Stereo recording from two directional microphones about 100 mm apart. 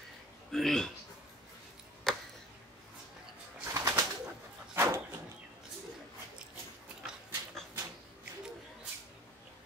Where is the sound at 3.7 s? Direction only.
35° right (ahead or behind).